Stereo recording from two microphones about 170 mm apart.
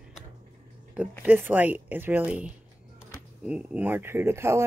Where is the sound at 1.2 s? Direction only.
10° right (ahead or behind).